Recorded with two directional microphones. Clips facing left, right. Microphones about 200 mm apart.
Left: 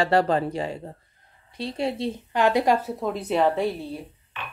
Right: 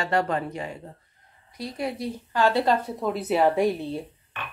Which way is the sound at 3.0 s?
5° right (ahead or behind).